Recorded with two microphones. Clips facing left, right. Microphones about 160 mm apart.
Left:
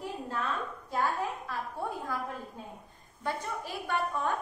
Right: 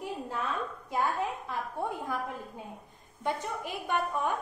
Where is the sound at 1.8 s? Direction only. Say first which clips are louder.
Right 2 dB; 15° right (ahead or behind).